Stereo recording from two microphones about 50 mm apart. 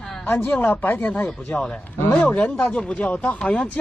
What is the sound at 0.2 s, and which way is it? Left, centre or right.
A woman's voice, left.